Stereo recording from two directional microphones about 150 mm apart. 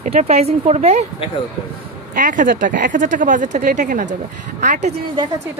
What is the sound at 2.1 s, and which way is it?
Speech, 60° right (ahead or behind).